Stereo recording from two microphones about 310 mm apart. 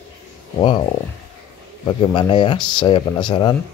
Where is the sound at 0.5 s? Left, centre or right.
Centre.